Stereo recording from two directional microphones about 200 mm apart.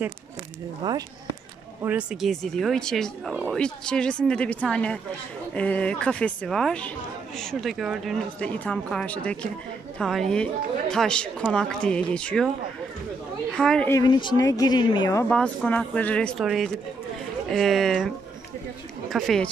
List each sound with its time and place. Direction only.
0.8 s speech: 20° right (ahead or behind)
1.8 s a woman's voice: 5° right (ahead or behind)
13.5 s a woman's voice: 5° left (ahead or behind)
13.9 s speech: 20° left (ahead or behind)
15.2 s a woman's voice: 5° left (ahead or behind)